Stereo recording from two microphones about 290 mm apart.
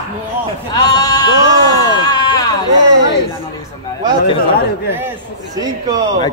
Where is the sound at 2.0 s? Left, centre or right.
Centre.